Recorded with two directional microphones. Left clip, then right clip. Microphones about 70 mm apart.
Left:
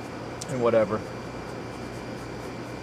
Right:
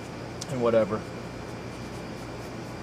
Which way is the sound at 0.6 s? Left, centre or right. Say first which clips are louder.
Left 1 dB; centre.